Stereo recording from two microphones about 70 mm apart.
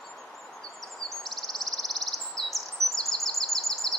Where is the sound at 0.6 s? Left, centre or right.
Centre.